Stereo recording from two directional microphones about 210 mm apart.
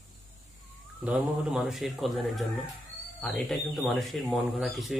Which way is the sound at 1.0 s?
Centre (ahead or behind).